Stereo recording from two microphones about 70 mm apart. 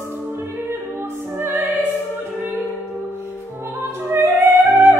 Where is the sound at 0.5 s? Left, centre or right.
Right.